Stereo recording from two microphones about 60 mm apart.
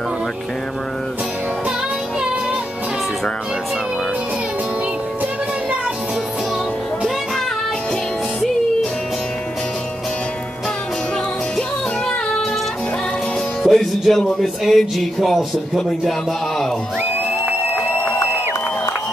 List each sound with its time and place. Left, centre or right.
13.6 s music: centre
14.4 s speech: centre